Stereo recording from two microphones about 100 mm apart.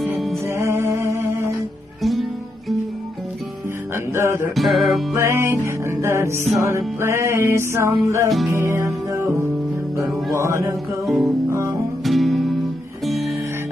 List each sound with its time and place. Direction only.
0.5 s music: 30° right (ahead or behind)
2.0 s music: centre (ahead or behind)
3.9 s music: 25° right (ahead or behind)
4.6 s music: centre (ahead or behind)
5.1 s music: 25° right (ahead or behind)
11.1 s guitar: centre (ahead or behind)
11.5 s music: 25° right (ahead or behind)
12.0 s music: centre (ahead or behind)